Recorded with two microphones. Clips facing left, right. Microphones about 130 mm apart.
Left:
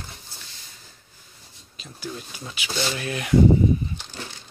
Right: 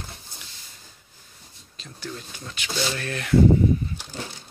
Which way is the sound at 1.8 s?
10° left (ahead or behind).